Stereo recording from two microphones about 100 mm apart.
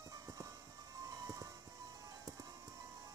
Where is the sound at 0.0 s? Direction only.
35° right (ahead or behind).